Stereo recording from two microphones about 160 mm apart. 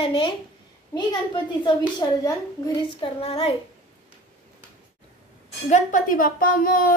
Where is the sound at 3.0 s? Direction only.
40° left (ahead or behind).